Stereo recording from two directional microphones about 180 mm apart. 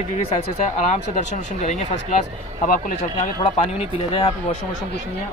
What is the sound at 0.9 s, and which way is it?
Speech, 40° left (ahead or behind).